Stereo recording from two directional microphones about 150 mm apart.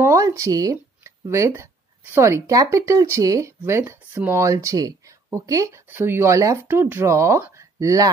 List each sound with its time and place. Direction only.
0.0 s speech: 20° right (ahead or behind)